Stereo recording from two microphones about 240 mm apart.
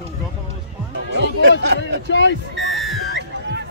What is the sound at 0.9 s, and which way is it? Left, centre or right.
Speech, right.